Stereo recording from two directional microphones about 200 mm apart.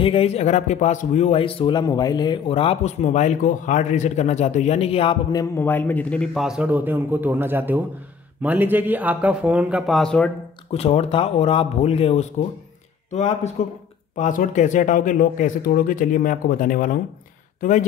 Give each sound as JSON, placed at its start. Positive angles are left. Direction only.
{"t": 0.0, "sound": "a man's voice", "side_deg": 30}
{"t": 10.7, "sound": "speech", "side_deg": 30}